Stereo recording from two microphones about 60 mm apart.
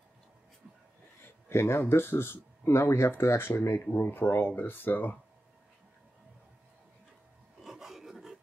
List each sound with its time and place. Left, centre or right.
1.5 s speech: left
7.6 s filing: centre